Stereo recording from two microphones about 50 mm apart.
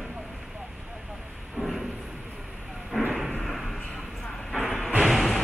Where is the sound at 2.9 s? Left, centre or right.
Centre.